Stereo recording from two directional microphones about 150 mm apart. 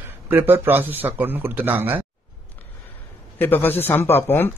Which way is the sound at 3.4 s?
15° left (ahead or behind).